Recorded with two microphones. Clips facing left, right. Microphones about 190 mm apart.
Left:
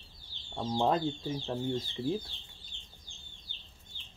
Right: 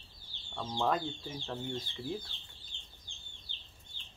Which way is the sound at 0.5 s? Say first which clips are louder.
Left 4 dB; 30° left (ahead or behind).